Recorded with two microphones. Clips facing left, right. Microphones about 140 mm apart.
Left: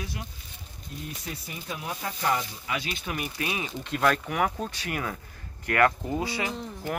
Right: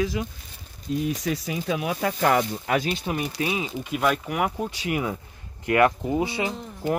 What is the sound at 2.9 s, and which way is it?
Speech, 30° right (ahead or behind).